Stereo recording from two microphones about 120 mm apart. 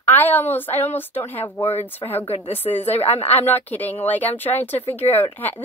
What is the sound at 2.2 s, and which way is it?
A woman's voice, 55° left (ahead or behind).